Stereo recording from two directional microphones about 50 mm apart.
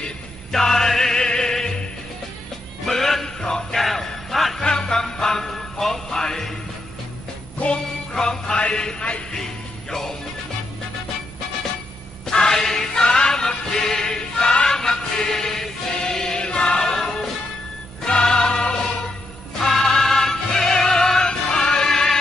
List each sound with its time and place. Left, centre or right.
0.5 s music: centre
4.6 s music: centre
7.5 s music: left
8.1 s music: centre
12.3 s music: centre
14.5 s choir: centre
17.0 s music: centre